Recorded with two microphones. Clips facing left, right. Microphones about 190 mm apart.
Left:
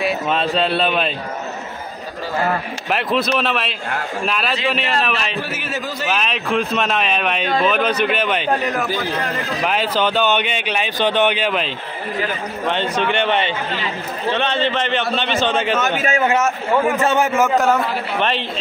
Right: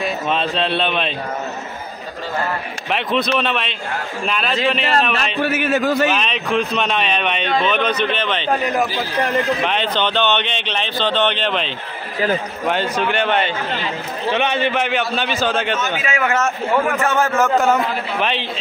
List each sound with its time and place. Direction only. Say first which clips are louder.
0.0 s speech: left 1 dB; centre (ahead or behind)
2.9 s speech: even; centre (ahead or behind)
5.4 s a man's voice: right 8 dB; 55° right (ahead or behind)
6.0 s speech: right 2 dB; 5° left (ahead or behind)
12.6 s speech: left 1 dB; 5° right (ahead or behind)
14.3 s a man's voice: right 1 dB; 15° right (ahead or behind)
16.0 s speech: left 3 dB; 35° left (ahead or behind)
16.3 s speech: left 1 dB; 15° left (ahead or behind)
17.4 s speech: right 3 dB; centre (ahead or behind)